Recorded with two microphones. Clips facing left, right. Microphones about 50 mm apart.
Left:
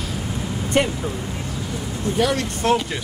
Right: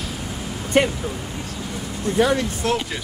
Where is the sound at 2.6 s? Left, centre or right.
Left.